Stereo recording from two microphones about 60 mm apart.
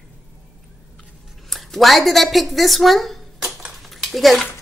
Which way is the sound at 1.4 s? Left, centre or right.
Centre.